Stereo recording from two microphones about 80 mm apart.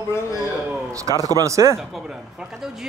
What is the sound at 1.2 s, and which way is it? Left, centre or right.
Speech, right.